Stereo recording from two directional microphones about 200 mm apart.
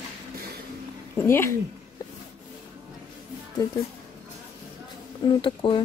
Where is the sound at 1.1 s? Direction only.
10° left (ahead or behind).